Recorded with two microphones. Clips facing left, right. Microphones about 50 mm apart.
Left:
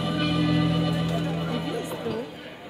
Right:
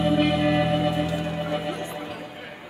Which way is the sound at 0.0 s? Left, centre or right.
Right.